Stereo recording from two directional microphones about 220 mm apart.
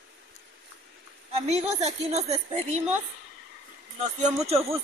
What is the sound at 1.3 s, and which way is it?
A woman's voice, 30° right (ahead or behind).